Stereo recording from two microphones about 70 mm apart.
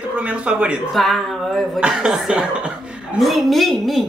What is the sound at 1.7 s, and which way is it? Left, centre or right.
Speech, centre.